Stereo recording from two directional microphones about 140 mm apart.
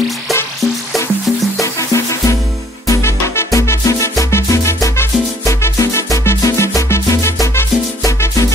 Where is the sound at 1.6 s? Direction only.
20° left (ahead or behind).